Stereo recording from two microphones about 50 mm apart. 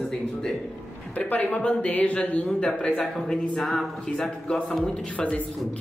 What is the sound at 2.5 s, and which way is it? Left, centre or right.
Speech, centre.